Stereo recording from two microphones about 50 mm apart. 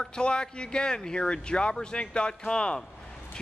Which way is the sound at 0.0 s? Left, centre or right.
Centre.